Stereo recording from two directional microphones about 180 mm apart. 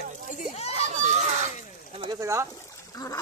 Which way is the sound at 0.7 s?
40° right (ahead or behind).